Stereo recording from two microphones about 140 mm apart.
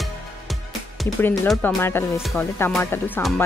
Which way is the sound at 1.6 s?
15° left (ahead or behind).